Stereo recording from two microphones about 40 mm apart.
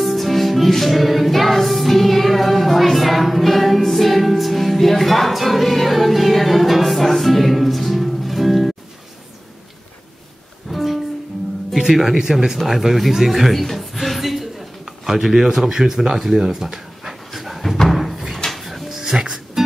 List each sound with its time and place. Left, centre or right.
0.0 s music: centre
10.7 s music: centre
11.7 s speech: centre
17.8 s a sound: centre
18.5 s drawer open or close: centre
19.1 s music: centre